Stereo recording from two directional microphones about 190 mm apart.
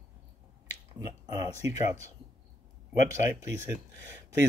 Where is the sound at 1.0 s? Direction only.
20° right (ahead or behind).